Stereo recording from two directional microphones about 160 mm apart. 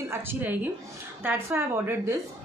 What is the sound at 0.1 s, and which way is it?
A woman's voice, 15° right (ahead or behind).